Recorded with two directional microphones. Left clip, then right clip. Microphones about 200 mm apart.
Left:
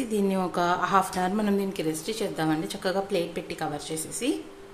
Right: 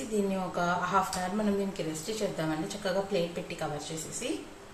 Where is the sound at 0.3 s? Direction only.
60° left (ahead or behind).